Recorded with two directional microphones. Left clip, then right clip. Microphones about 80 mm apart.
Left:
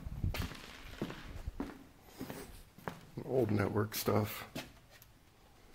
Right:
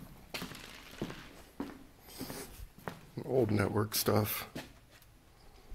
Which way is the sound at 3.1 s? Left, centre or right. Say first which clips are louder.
Right 3 dB; right.